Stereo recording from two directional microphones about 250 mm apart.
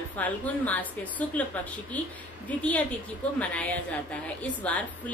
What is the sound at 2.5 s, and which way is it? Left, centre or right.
Speech, centre.